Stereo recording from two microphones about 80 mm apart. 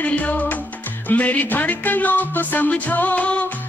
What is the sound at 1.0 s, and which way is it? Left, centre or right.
Music, centre.